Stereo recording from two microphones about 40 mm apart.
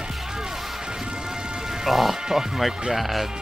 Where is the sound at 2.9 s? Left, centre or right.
Centre.